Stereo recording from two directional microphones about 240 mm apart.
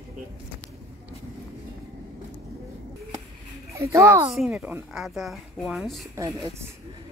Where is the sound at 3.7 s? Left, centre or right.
Centre.